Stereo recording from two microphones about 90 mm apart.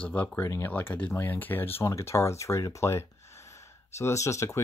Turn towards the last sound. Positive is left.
turn(degrees=35)  # may be behind; listen again after turning